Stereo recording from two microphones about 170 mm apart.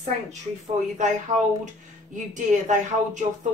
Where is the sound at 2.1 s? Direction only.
45° right (ahead or behind).